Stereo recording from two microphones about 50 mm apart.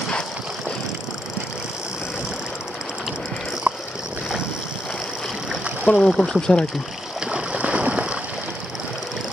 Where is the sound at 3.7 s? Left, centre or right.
Right.